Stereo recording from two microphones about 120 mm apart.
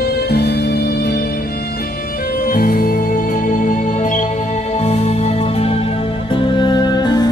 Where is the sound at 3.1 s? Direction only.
90° left.